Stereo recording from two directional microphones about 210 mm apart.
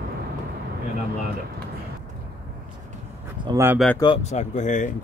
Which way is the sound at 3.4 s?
15° right (ahead or behind).